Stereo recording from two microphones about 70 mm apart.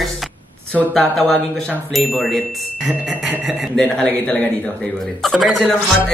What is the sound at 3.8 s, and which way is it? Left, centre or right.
Speech, centre.